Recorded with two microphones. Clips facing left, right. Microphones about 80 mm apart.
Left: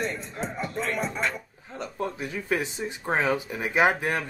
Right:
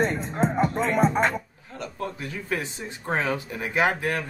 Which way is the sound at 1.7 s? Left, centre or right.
Left.